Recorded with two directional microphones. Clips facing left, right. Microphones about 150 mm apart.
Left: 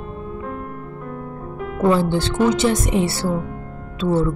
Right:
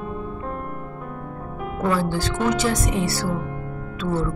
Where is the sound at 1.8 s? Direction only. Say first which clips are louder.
Left 5 dB; 25° left (ahead or behind).